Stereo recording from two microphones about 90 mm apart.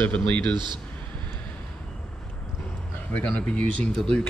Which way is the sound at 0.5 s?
55° right (ahead or behind).